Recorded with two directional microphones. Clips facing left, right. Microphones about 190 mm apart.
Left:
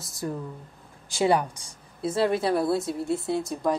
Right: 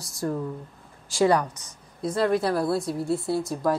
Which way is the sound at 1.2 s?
25° left (ahead or behind).